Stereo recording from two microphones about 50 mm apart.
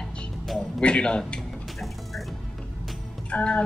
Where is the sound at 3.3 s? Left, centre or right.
Left.